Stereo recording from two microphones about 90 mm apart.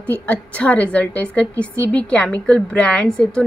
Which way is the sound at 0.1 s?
15° left (ahead or behind).